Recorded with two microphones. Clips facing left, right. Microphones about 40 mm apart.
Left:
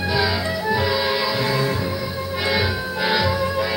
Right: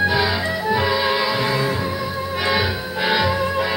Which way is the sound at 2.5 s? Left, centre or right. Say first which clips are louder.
Even; right.